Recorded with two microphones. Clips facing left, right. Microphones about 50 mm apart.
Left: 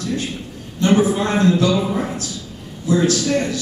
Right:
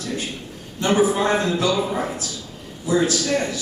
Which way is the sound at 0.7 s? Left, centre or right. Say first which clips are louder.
Left 2 dB; centre.